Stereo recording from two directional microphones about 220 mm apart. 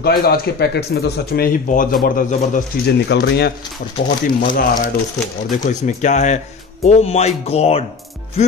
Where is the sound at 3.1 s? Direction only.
50° left (ahead or behind).